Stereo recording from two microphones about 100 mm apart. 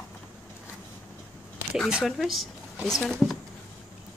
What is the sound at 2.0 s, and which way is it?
Speech, centre (ahead or behind).